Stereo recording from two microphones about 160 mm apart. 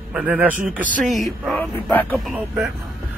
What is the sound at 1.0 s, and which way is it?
Speech, centre (ahead or behind).